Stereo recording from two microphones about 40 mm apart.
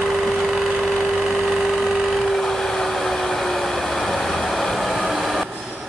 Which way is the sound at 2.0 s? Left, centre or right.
Centre.